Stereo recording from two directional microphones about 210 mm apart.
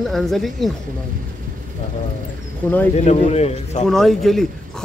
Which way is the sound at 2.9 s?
30° left (ahead or behind).